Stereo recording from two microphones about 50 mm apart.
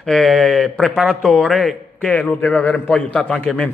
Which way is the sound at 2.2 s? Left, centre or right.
Left.